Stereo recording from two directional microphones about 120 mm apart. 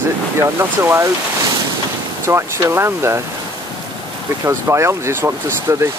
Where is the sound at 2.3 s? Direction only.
20° right (ahead or behind).